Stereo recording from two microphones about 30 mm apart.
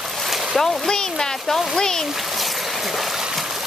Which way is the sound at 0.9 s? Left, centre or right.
Left.